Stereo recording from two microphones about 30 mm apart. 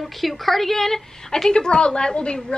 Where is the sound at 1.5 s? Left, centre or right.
Left.